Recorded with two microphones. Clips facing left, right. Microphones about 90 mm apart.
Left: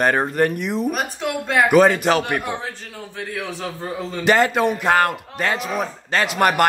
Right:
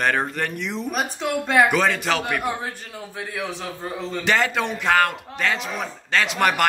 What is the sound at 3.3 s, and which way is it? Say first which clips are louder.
Speech: even; centre (ahead or behind).